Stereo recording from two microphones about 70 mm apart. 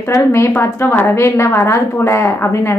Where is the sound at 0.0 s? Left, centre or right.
Left.